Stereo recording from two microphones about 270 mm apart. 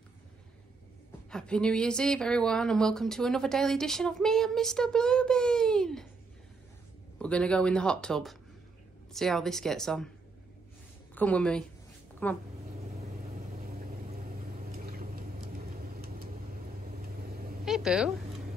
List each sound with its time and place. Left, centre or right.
1.3 s speech: centre
7.2 s speech: centre
11.1 s speech: centre
13.7 s vehicle: right
17.6 s a sound: centre